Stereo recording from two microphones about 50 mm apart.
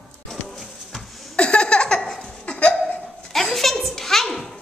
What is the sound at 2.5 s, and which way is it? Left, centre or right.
Hiccup, left.